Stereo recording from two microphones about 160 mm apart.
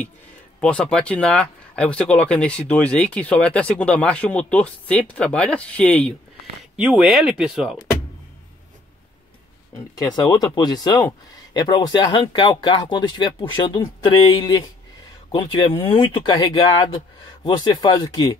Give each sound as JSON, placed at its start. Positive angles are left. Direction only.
{"t": 0.6, "sound": "speech", "side_deg": 5}
{"t": 9.9, "sound": "speech", "side_deg": 25}